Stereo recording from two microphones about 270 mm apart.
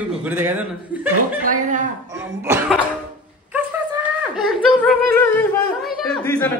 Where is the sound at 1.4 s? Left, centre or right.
Right.